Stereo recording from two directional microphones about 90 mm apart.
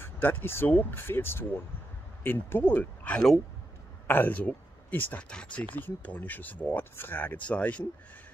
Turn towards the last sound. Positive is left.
turn(degrees=15)  # may be behind; listen again after turning